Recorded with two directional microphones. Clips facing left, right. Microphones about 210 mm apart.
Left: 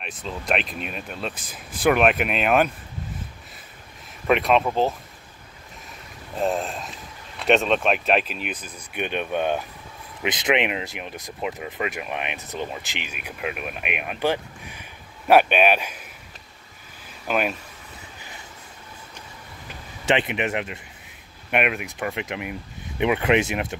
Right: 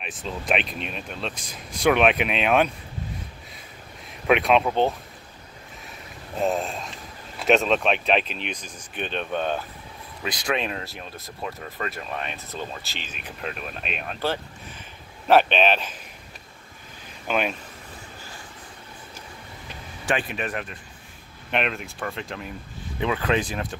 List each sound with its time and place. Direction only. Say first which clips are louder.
0.0 s speech: even; centre (ahead or behind)
4.3 s speech: even; centre (ahead or behind)
6.4 s speech: even; centre (ahead or behind)
17.3 s speech: left 1 dB; 5° left (ahead or behind)
20.1 s speech: left 4 dB; 20° left (ahead or behind)